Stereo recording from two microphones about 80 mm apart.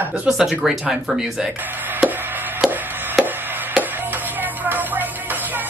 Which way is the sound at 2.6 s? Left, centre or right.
Centre.